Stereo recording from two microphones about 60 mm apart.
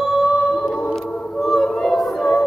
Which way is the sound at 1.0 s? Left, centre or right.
Centre.